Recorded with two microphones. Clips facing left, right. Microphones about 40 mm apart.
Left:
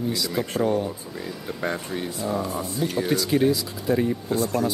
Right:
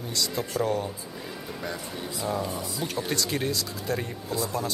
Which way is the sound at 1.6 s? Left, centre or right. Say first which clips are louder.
Left 8 dB; left.